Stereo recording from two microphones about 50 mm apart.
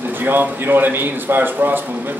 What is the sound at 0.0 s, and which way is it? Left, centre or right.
A man's voice, right.